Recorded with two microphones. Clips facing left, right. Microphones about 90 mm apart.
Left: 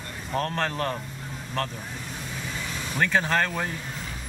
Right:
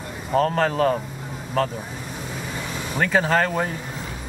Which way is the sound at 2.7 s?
5° right (ahead or behind).